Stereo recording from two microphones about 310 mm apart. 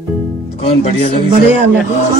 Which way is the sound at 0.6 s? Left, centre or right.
Centre.